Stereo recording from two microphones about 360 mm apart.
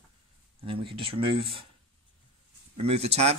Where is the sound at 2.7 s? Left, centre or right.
Centre.